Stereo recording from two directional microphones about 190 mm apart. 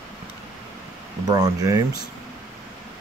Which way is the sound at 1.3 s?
20° right (ahead or behind).